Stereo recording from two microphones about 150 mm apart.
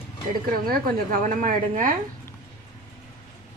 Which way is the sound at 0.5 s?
70° right (ahead or behind).